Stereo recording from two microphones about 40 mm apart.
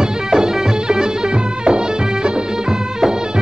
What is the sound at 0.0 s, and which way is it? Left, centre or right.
Music, centre.